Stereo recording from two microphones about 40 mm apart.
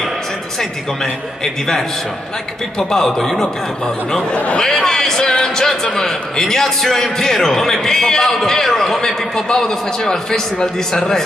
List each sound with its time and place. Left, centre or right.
1.4 s a man's voice: centre
2.9 s a man's voice: centre
3.8 s a man's voice: centre